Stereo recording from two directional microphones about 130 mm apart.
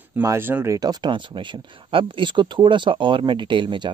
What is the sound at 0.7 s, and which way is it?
Speech, 35° right (ahead or behind).